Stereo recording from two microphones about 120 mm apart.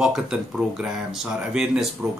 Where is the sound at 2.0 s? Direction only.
20° right (ahead or behind).